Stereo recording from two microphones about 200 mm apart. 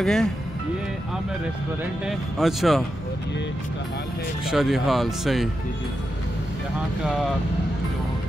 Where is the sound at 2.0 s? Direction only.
Centre (ahead or behind).